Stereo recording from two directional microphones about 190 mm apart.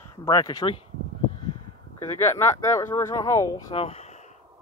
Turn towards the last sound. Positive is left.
turn(degrees=30)  # may be behind; listen again after turning